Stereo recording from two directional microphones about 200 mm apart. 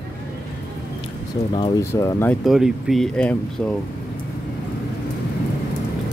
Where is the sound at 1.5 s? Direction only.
25° left (ahead or behind).